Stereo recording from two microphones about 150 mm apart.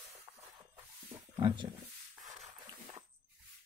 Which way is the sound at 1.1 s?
25° right (ahead or behind).